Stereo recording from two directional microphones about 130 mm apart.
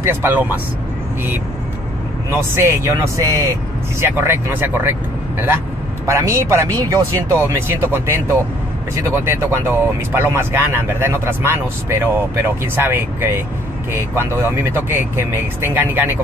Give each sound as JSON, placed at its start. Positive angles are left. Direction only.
{"t": 0.0, "sound": "speech", "side_deg": -15}
{"t": 2.3, "sound": "speech", "side_deg": -20}
{"t": 6.0, "sound": "speech", "side_deg": -20}